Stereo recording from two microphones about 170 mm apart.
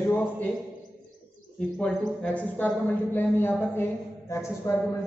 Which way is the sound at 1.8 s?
5° left (ahead or behind).